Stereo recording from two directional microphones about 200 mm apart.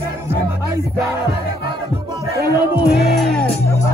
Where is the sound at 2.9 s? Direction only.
50° left (ahead or behind).